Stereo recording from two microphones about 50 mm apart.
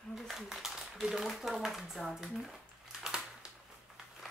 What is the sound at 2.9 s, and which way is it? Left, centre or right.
Crushing, centre.